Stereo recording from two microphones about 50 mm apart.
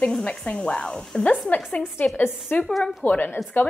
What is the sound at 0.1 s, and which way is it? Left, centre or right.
Speech, left.